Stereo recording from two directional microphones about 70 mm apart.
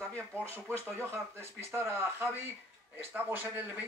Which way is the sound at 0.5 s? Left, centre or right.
Right.